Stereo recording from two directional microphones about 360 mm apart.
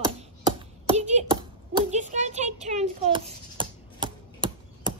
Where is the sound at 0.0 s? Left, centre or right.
Centre.